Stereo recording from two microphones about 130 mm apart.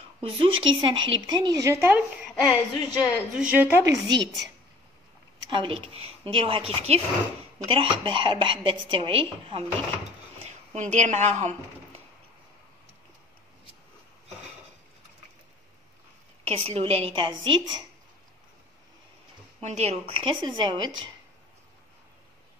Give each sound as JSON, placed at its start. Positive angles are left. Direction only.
{"t": 0.2, "sound": "speech", "side_deg": -45}
{"t": 2.4, "sound": "a woman's voice", "side_deg": 0}
{"t": 4.1, "sound": "speech", "side_deg": -30}
{"t": 5.5, "sound": "a woman's voice", "side_deg": -40}
{"t": 6.7, "sound": "a woman's voice", "side_deg": -55}
{"t": 7.6, "sound": "speech", "side_deg": -45}
{"t": 10.4, "sound": "a woman's voice", "side_deg": -60}
{"t": 16.4, "sound": "speech", "side_deg": -50}
{"t": 19.6, "sound": "speech", "side_deg": -60}